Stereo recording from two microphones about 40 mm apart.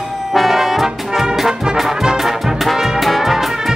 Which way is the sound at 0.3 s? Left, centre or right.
Centre.